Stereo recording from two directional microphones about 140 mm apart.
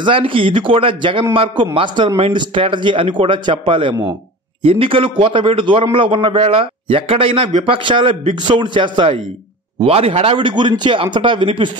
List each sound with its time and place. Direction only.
0.0 s a man's voice: 40° right (ahead or behind)